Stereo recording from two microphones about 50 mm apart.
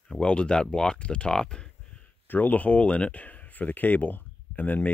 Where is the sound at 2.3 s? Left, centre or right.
Left.